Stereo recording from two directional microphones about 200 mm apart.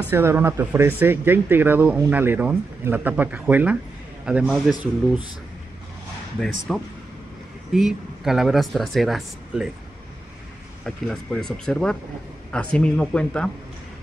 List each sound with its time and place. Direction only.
0.1 s speech: 10° right (ahead or behind)
6.4 s speech: centre (ahead or behind)
7.7 s speech: centre (ahead or behind)
11.1 s speech: 5° left (ahead or behind)